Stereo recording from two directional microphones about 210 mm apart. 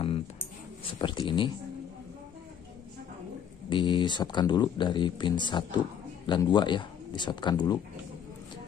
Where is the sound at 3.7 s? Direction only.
20° left (ahead or behind).